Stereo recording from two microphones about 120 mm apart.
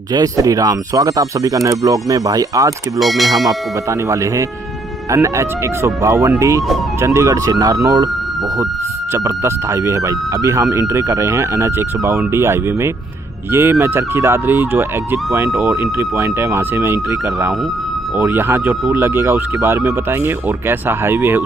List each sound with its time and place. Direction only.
0.1 s speech: 30° right (ahead or behind)
3.0 s speech: centre (ahead or behind)
4.1 s speech: 25° right (ahead or behind)
9.1 s speech: 25° right (ahead or behind)